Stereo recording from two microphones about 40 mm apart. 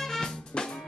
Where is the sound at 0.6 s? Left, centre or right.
Left.